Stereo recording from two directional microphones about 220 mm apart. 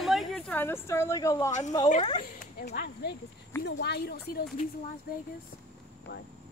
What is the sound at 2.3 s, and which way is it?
Speech, 40° left (ahead or behind).